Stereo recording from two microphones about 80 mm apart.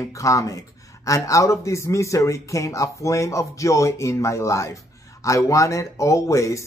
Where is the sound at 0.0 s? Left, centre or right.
Left.